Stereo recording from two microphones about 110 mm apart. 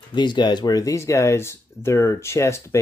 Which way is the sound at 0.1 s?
45° left (ahead or behind).